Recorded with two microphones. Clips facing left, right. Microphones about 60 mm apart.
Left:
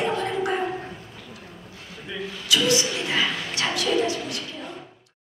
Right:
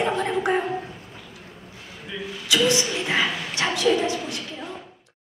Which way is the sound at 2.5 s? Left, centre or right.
Right.